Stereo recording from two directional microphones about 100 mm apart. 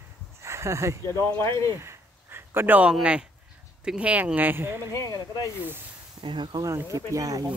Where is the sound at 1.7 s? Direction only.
25° right (ahead or behind).